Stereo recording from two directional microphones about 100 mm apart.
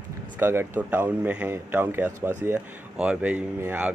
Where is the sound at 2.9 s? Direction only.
10° right (ahead or behind).